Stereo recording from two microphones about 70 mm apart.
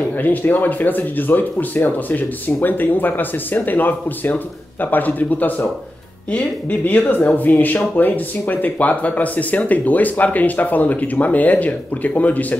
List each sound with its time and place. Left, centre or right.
0.2 s speech: left